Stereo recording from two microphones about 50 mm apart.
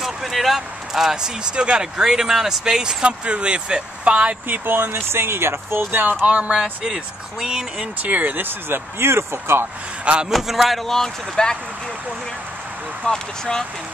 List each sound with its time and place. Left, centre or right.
0.0 s a sound: centre
0.6 s speech: centre
4.5 s speech: right
4.9 s speech: right
5.9 s speech: right
6.2 s speech: right
6.9 s speech: centre
8.0 s speech: right
10.3 s speech: centre
13.0 s speech: centre